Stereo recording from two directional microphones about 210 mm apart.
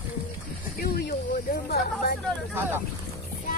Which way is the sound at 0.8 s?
45° left (ahead or behind).